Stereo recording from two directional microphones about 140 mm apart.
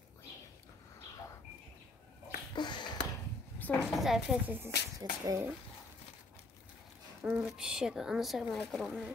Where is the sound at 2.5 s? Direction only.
35° left (ahead or behind).